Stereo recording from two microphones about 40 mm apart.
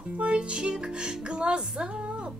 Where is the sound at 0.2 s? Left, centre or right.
Right.